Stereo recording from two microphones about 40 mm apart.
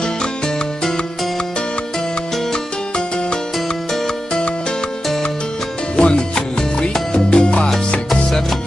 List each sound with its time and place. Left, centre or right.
5.9 s music: left
7.1 s salsa music: left
8.1 s music: centre